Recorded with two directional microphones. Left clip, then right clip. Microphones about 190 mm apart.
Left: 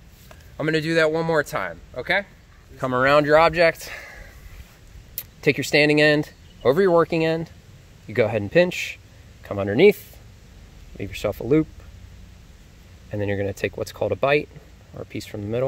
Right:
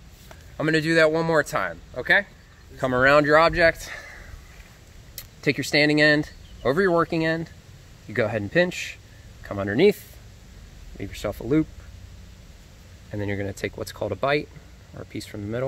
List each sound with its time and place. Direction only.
0.3 s a man's voice: 10° left (ahead or behind); by 11.6 s 30° left (ahead or behind)
13.1 s speech: 35° left (ahead or behind)